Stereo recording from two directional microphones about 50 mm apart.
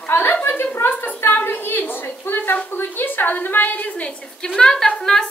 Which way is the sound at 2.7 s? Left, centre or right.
Left.